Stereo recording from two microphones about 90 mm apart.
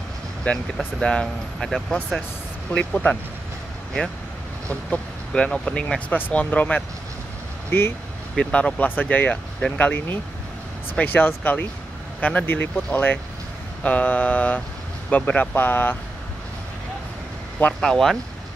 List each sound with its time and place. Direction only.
0.7 s speech: 10° left (ahead or behind)
2.0 s speech: 5° right (ahead or behind)
2.7 s speech: 15° left (ahead or behind)
4.6 s speech: 10° left (ahead or behind)
8.4 s speech: 10° left (ahead or behind)
17.7 s speech: 5° left (ahead or behind)